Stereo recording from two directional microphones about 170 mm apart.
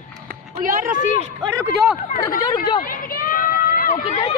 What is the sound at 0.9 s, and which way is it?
Speech, 45° left (ahead or behind).